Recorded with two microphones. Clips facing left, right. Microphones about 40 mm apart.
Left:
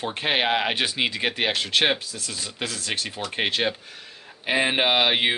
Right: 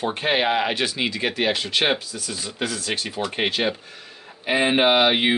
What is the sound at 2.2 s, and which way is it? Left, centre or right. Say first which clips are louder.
Speech: right 3 dB; centre.